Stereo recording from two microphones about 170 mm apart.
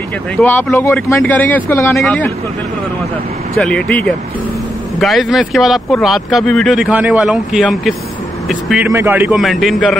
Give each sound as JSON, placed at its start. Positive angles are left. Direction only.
{"t": 0.4, "sound": "speech", "side_deg": 10}
{"t": 3.5, "sound": "speech", "side_deg": 5}
{"t": 8.9, "sound": "a man's voice", "side_deg": -15}
{"t": 9.3, "sound": "speech", "side_deg": 0}